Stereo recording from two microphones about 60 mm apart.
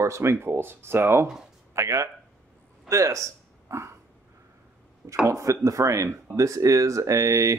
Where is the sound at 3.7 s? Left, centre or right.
Right.